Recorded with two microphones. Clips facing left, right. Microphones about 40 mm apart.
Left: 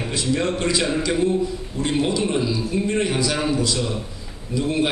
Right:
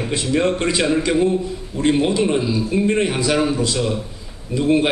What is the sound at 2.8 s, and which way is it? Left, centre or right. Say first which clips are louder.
A man's voice: right 2 dB; right.